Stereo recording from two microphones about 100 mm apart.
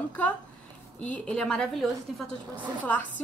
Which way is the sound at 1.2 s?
10° left (ahead or behind).